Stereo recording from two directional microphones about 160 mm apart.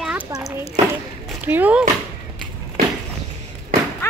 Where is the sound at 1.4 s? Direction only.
10° right (ahead or behind).